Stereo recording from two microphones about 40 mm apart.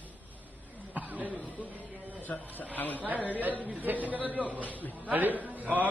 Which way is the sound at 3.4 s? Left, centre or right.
Right.